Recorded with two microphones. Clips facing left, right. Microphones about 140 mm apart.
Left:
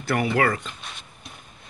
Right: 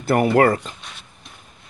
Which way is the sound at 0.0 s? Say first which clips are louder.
Right 7 dB; 45° right (ahead or behind).